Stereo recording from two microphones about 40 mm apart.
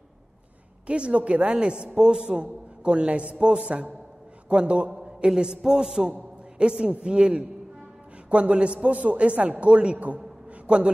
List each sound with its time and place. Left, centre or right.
0.8 s a man's voice: right
1.6 s a man's voice: right
8.3 s a man's voice: right